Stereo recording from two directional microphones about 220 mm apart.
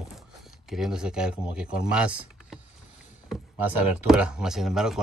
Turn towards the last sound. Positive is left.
turn(degrees=0)  # may be behind; listen again after turning